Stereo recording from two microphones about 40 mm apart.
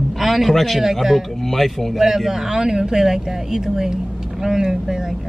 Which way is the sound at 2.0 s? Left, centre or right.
Centre.